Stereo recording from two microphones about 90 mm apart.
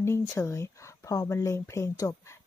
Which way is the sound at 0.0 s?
30° left (ahead or behind).